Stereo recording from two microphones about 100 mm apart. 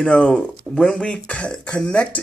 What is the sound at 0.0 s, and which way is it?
Speech, 10° left (ahead or behind).